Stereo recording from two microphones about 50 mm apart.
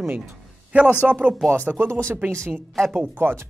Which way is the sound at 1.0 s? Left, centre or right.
Centre.